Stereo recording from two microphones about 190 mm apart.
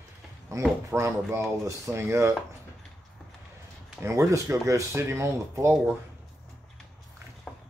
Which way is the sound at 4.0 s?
15° right (ahead or behind).